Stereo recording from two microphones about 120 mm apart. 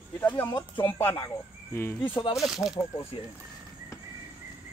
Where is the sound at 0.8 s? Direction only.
20° left (ahead or behind).